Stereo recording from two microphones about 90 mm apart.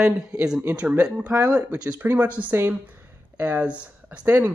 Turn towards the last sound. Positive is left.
turn(degrees=-20)  # may be behind; listen again after turning